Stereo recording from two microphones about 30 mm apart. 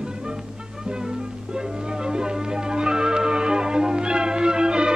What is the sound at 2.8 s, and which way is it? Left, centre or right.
Music, right.